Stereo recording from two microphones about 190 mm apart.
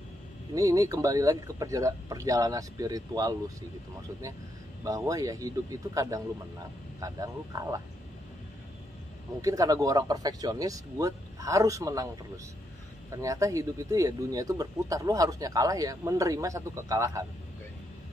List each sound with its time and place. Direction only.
0.6 s speech: 20° right (ahead or behind)
4.8 s speech: 15° right (ahead or behind)
9.4 s speech: 20° right (ahead or behind)
13.1 s speech: 15° right (ahead or behind)